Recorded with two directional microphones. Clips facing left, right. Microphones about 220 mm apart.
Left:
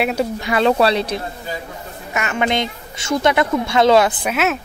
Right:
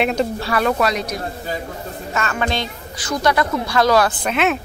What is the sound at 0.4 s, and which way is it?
Speech, 20° left (ahead or behind).